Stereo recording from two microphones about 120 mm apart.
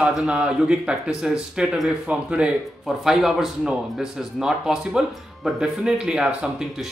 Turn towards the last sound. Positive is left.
turn(degrees=-5)  # may be behind; listen again after turning